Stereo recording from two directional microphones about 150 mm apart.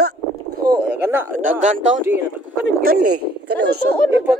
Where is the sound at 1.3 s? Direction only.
60° right (ahead or behind).